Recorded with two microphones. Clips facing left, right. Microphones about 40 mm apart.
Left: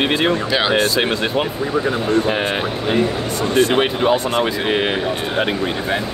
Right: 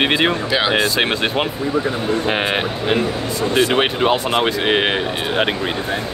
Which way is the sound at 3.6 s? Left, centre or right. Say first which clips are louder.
Left 1 dB; right.